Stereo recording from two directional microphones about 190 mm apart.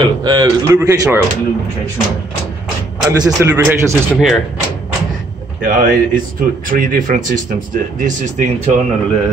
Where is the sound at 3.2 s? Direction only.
15° right (ahead or behind).